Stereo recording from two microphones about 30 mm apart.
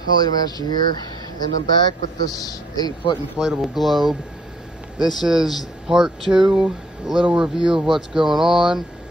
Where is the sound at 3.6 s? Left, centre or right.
Centre.